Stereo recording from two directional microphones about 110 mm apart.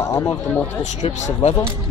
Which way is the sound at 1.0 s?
85° left.